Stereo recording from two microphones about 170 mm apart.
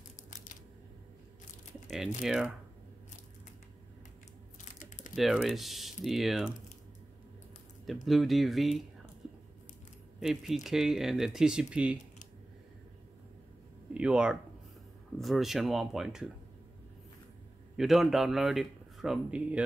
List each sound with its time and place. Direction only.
2.2 s a man's voice: 5° right (ahead or behind)
4.7 s typing: 50° left (ahead or behind)
5.1 s a man's voice: centre (ahead or behind)
7.8 s a man's voice: centre (ahead or behind)
10.2 s a man's voice: centre (ahead or behind)
13.9 s a man's voice: 5° right (ahead or behind)
17.7 s a man's voice: centre (ahead or behind)